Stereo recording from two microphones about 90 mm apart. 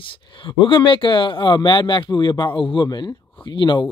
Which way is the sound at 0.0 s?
70° left (ahead or behind).